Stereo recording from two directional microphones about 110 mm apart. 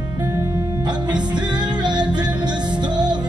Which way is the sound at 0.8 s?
40° right (ahead or behind).